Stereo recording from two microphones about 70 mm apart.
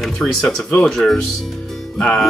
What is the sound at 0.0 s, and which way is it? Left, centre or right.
Speech, centre.